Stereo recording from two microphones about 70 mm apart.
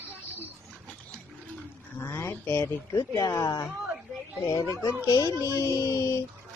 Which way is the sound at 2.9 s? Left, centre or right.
Left.